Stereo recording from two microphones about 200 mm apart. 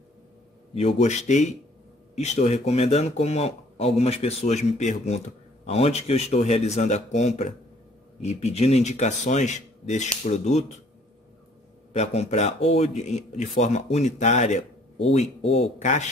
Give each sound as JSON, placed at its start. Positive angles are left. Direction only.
{"t": 0.7, "sound": "a man's voice", "side_deg": 35}
{"t": 11.9, "sound": "a man's voice", "side_deg": 35}